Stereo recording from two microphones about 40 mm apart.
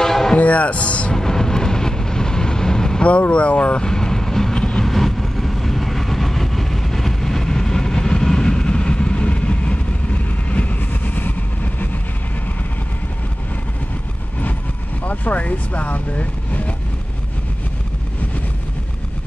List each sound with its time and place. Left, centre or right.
0.0 s music: centre
0.4 s speech: left
1.1 s vehicle: centre
3.1 s speech: left
3.8 s vehicle: centre; by 12.0 s left
15.0 s speech: left